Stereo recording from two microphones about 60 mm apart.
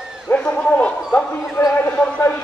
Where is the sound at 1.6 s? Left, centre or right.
Left.